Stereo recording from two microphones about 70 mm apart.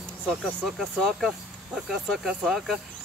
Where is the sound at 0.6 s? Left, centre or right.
Centre.